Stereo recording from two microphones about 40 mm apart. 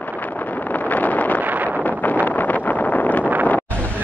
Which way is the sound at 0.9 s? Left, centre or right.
Left.